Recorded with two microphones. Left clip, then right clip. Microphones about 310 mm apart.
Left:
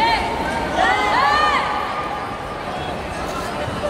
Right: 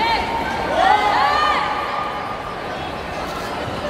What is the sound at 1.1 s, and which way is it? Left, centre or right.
Crowd, left.